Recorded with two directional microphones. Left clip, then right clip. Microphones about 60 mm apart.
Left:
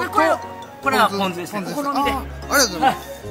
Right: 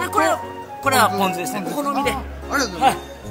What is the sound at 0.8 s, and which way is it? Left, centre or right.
Speech, right.